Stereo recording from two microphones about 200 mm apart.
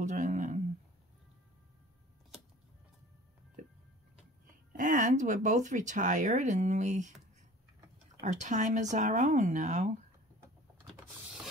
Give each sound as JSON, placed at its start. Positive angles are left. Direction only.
{"t": 0.0, "sound": "a sound", "side_deg": -35}
{"t": 3.6, "sound": "music", "side_deg": -40}
{"t": 4.5, "sound": "speech", "side_deg": -40}
{"t": 8.2, "sound": "speech", "side_deg": -35}